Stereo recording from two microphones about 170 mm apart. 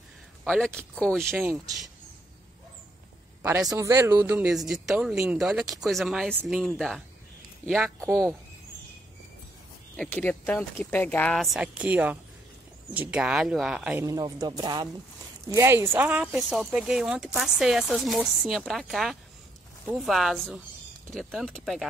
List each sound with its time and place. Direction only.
0.4 s speech: 5° left (ahead or behind)
3.4 s speech: 15° right (ahead or behind); by 8.3 s 5° left (ahead or behind)
9.9 s speech: 10° left (ahead or behind)
11.4 s speech: 5° right (ahead or behind)
14.0 s speech: 20° right (ahead or behind); by 21.8 s centre (ahead or behind)